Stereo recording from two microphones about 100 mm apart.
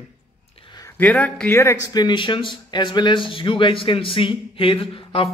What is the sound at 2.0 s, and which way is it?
A man's voice, 50° left (ahead or behind).